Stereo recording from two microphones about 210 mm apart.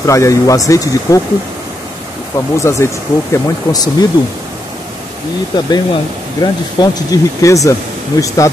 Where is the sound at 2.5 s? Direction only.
15° left (ahead or behind).